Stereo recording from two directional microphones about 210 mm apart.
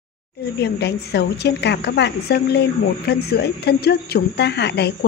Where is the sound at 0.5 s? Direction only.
50° left (ahead or behind).